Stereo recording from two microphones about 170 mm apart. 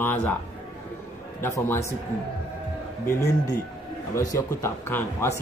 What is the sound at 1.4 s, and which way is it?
Speech, 15° left (ahead or behind).